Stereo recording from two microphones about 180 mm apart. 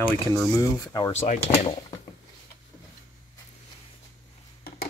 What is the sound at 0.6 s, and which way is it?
Speech, 20° left (ahead or behind).